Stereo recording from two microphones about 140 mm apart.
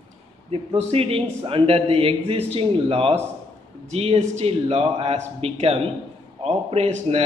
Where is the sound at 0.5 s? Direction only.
45° right (ahead or behind).